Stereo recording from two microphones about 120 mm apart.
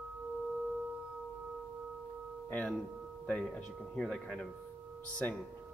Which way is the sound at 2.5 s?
15° left (ahead or behind).